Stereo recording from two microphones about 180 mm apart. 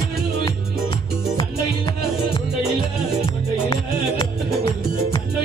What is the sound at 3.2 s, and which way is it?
Music, 25° left (ahead or behind).